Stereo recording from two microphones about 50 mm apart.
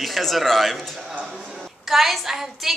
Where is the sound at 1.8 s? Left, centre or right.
Centre.